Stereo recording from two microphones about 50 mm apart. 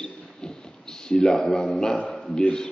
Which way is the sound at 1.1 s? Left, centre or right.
Centre.